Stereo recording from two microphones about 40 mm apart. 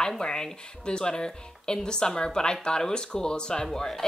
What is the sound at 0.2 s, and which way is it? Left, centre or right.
Speech, centre.